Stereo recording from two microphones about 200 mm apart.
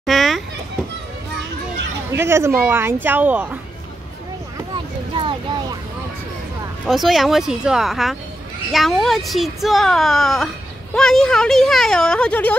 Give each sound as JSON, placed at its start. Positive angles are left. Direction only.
{"t": 0.0, "sound": "children playing", "side_deg": 0}
{"t": 2.1, "sound": "speech", "side_deg": -15}
{"t": 5.1, "sound": "vehicle", "side_deg": -25}
{"t": 6.9, "sound": "speech", "side_deg": 0}